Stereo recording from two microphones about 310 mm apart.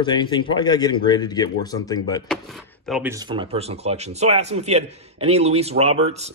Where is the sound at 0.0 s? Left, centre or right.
Centre.